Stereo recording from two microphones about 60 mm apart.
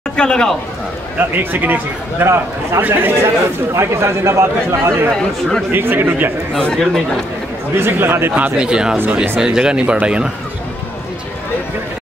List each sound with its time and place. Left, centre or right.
0.1 s speech: centre
1.4 s speech: right
2.2 s a man's voice: right
2.8 s speech: right
3.7 s a man's voice: right
5.7 s speech: right
6.6 s a man's voice: centre
7.7 s speech: right
8.5 s speech: centre